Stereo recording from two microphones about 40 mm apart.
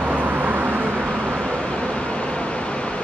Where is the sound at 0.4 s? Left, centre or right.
Right.